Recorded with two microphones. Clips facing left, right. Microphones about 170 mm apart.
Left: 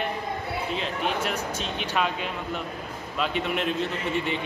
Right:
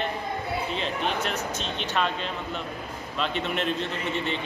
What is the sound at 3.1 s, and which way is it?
Speech, 10° left (ahead or behind).